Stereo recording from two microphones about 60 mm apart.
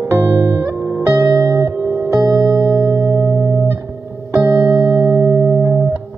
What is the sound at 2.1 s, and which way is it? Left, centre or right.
Music, right.